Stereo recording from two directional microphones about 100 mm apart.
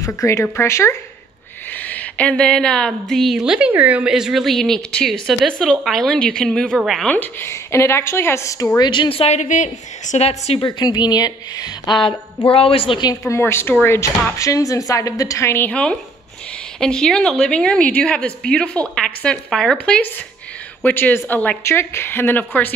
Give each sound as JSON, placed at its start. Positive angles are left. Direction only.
{"t": 0.0, "sound": "a woman's voice", "side_deg": 30}
{"t": 1.7, "sound": "a woman's voice", "side_deg": 15}
{"t": 7.1, "sound": "a woman's voice", "side_deg": 20}
{"t": 8.7, "sound": "a woman's voice", "side_deg": 45}
{"t": 10.1, "sound": "a woman's voice", "side_deg": 90}
{"t": 10.6, "sound": "a woman's voice", "side_deg": 45}
{"t": 12.4, "sound": "a woman's voice", "side_deg": 70}
{"t": 13.3, "sound": "a woman's voice", "side_deg": 25}
{"t": 15.7, "sound": "a woman's voice", "side_deg": 10}